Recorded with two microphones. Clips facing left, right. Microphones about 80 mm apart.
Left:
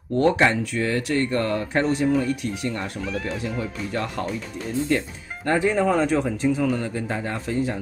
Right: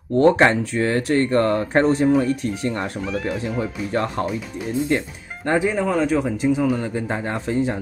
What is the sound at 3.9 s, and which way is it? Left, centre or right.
Speech, right.